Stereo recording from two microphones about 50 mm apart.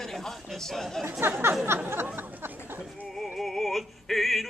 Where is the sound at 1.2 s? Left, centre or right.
Right.